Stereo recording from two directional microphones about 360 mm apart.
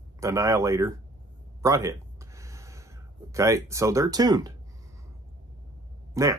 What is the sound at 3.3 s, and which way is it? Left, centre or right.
Speech, centre.